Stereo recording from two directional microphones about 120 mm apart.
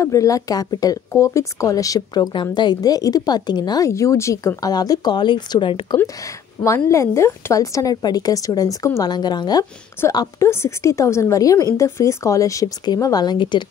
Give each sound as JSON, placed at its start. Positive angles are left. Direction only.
{"t": 0.0, "sound": "speech", "side_deg": 25}
{"t": 6.6, "sound": "a woman's voice", "side_deg": 25}
{"t": 10.0, "sound": "a woman's voice", "side_deg": 20}